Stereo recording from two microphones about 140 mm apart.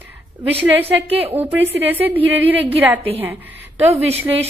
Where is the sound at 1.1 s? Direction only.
45° right (ahead or behind).